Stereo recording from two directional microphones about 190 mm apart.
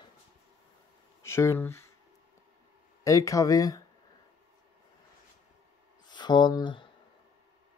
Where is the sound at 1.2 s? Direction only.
15° left (ahead or behind).